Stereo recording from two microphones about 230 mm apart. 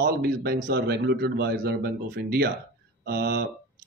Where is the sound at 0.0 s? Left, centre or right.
Right.